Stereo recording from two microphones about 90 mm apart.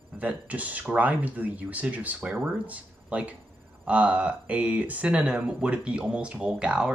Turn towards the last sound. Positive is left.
turn(degrees=-10)  # may be behind; listen again after turning